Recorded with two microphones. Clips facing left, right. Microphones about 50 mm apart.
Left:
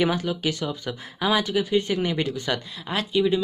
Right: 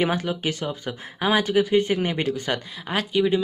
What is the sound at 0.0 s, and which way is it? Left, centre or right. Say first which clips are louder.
Speech: even; right.